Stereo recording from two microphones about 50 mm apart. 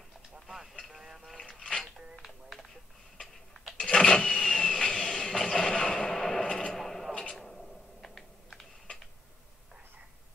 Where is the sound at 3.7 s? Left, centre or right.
Centre.